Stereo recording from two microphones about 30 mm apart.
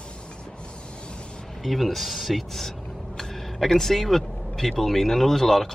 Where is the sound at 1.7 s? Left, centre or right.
Centre.